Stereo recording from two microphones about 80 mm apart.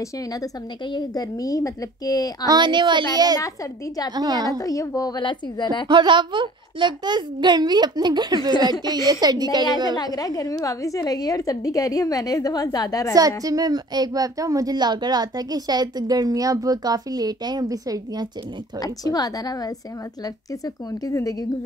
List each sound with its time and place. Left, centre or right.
0.9 s a woman's voice: left
2.4 s a child's voice: right
4.1 s speech: right
4.6 s a woman's voice: left
5.2 s a woman's voice: left
5.9 s a child's voice: right
8.9 s a woman's voice: right
9.9 s a woman's voice: left
13.4 s speech: right
18.8 s a woman's voice: left